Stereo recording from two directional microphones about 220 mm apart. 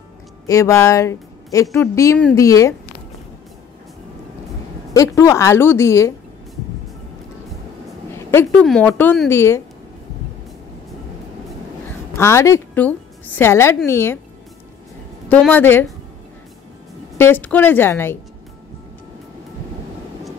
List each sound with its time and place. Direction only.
0.5 s speech: 15° left (ahead or behind)
4.9 s speech: 15° left (ahead or behind)
8.6 s speech: 5° left (ahead or behind)
12.2 s a woman's voice: 10° left (ahead or behind)
15.2 s speech: 5° left (ahead or behind)
17.2 s speech: 10° left (ahead or behind)